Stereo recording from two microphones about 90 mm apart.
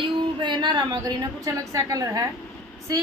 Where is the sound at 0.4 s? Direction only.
55° right (ahead or behind).